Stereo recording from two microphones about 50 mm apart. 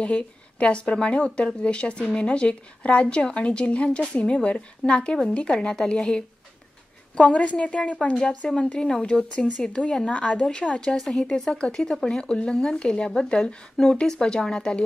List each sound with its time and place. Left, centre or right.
0.0 s speech: left
10.9 s speech: centre